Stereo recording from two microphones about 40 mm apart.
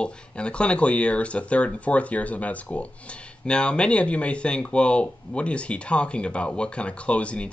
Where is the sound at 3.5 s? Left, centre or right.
Left.